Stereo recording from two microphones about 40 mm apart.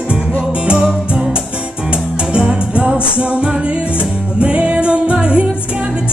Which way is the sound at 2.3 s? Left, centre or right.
Right.